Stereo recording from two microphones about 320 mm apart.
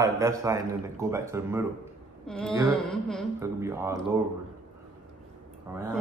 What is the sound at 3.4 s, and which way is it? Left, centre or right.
Speech, centre.